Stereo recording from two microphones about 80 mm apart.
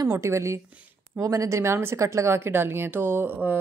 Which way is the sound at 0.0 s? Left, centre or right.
Right.